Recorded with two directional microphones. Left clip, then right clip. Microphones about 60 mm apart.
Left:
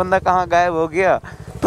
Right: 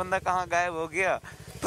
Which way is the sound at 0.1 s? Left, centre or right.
Left.